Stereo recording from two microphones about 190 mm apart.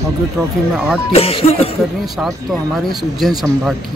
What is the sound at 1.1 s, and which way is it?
Speech, 30° left (ahead or behind).